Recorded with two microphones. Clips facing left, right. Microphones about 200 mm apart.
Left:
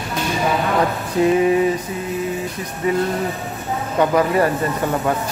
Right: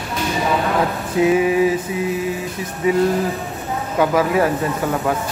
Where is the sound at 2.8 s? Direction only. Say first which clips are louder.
Right 3 dB; 5° right (ahead or behind).